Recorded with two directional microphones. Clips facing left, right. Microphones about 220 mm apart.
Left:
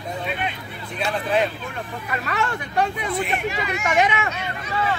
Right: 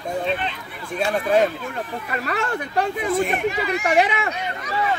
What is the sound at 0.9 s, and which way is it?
Speech, 45° right (ahead or behind).